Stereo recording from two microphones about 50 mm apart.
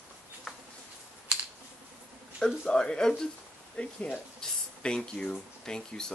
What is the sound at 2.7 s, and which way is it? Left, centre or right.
Speech, centre.